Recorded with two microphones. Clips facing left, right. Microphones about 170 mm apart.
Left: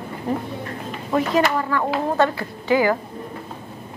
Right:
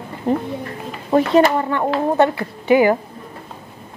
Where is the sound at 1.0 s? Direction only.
30° right (ahead or behind).